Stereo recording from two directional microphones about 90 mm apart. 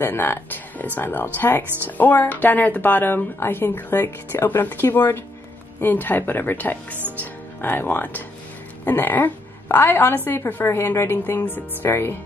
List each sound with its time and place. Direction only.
0.0 s a woman's voice: 25° left (ahead or behind)